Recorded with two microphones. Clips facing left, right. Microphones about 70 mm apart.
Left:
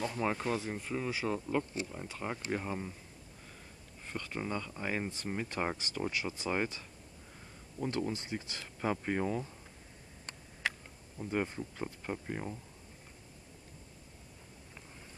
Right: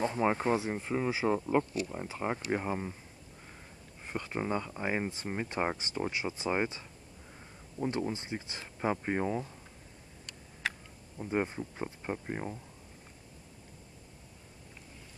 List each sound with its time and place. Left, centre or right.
0.0 s speech: right
4.1 s speech: centre
7.8 s speech: centre
8.1 s speech: right
11.1 s speech: centre